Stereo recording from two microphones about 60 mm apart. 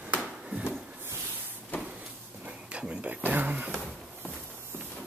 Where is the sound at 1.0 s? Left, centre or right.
Right.